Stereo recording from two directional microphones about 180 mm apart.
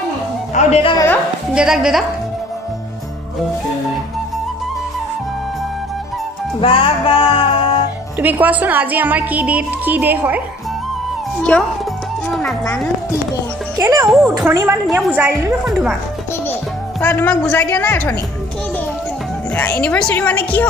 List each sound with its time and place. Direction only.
0.6 s a woman's voice: 35° left (ahead or behind)
1.5 s a woman's voice: 5° right (ahead or behind)
6.6 s music: 30° left (ahead or behind)
8.2 s speech: 10° right (ahead or behind)
11.5 s a woman's voice: 5° left (ahead or behind)
13.7 s a woman's voice: 15° right (ahead or behind)
17.0 s a woman's voice: 10° left (ahead or behind)
19.5 s a woman's voice: 10° left (ahead or behind)